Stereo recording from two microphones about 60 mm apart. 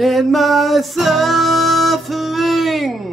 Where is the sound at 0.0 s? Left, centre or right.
Centre.